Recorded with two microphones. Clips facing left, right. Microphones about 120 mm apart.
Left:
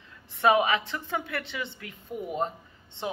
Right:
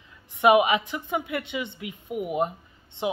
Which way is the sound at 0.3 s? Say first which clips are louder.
Right 4 dB; 15° right (ahead or behind).